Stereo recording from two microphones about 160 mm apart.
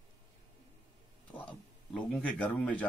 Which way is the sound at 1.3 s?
5° left (ahead or behind).